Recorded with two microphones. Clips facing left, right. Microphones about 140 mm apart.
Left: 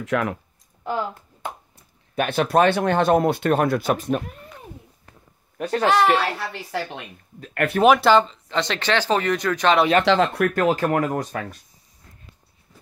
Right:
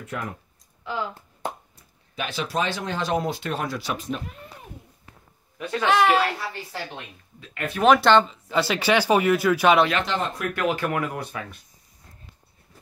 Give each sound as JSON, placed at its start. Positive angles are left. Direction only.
{"t": 0.0, "sound": "speech", "side_deg": 90}
{"t": 2.1, "sound": "speech", "side_deg": 55}
{"t": 5.6, "sound": "speech", "side_deg": 40}
{"t": 5.9, "sound": "speech", "side_deg": 0}
{"t": 6.3, "sound": "speech", "side_deg": 70}
{"t": 7.3, "sound": "speech", "side_deg": 45}
{"t": 7.8, "sound": "speech", "side_deg": 5}
{"t": 10.0, "sound": "speech", "side_deg": 90}
{"t": 10.5, "sound": "speech", "side_deg": 40}